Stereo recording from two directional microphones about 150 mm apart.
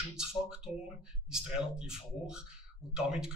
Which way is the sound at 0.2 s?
5° right (ahead or behind).